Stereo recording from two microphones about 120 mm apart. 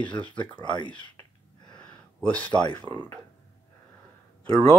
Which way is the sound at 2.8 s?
40° right (ahead or behind).